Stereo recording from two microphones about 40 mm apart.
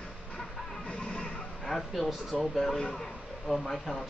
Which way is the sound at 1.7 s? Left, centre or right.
Centre.